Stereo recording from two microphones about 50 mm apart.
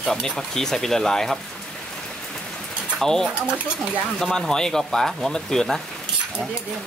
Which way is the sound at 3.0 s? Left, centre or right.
Centre.